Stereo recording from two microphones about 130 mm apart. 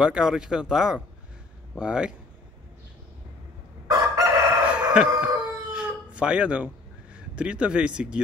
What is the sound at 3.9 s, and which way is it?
Crowing, 25° right (ahead or behind).